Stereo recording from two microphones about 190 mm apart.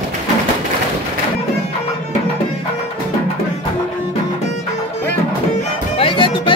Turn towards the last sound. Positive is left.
turn(degrees=25)  # may be behind; listen again after turning